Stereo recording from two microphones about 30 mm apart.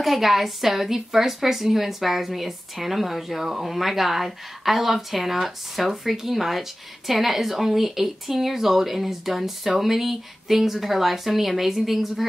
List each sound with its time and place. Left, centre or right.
0.0 s speech: centre